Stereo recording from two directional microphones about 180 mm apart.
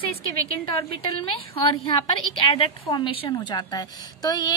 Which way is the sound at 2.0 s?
30° left (ahead or behind).